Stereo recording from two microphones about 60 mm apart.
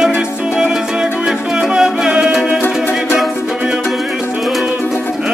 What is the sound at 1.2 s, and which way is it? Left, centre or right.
Music, centre.